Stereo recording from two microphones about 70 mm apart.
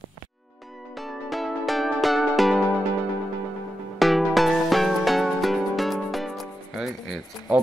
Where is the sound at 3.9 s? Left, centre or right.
Centre.